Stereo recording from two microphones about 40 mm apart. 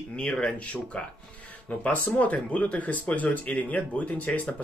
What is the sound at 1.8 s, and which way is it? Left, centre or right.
Speech, left.